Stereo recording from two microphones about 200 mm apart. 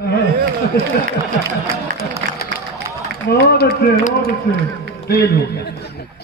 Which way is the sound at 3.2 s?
50° left (ahead or behind).